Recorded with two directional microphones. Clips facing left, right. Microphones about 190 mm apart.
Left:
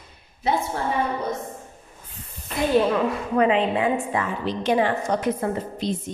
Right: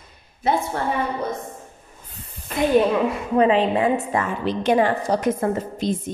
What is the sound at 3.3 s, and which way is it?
A woman's voice, 35° right (ahead or behind).